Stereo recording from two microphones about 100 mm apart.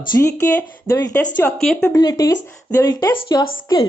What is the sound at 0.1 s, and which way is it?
Speech, 25° left (ahead or behind).